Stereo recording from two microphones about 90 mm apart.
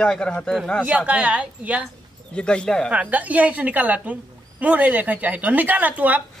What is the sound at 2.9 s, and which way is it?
Speech, 15° right (ahead or behind).